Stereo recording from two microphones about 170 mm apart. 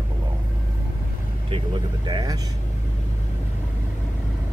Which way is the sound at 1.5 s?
30° right (ahead or behind).